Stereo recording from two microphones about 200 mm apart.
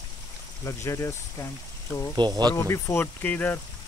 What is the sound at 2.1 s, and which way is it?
Speech, 20° right (ahead or behind).